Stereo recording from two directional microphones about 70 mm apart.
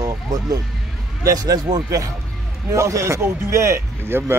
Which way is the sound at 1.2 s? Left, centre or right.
Right.